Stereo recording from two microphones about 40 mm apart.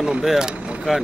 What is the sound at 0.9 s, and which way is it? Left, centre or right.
Speech, centre.